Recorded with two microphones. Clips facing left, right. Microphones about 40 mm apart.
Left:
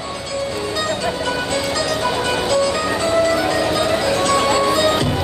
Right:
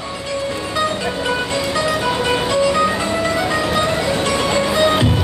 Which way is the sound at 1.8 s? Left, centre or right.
Centre.